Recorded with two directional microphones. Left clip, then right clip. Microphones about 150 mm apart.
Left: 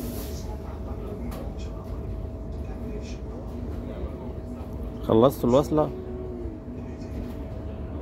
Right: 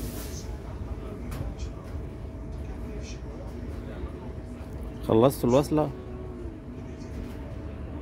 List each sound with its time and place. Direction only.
5.0 s speech: 20° right (ahead or behind)